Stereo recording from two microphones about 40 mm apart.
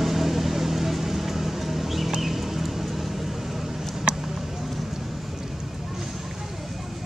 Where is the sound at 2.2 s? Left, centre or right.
Centre.